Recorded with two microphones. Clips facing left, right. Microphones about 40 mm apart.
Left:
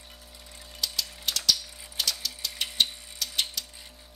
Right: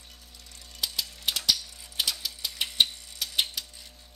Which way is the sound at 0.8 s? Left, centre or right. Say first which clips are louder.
Even; centre.